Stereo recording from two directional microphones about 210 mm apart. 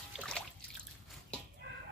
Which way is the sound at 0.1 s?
5° left (ahead or behind).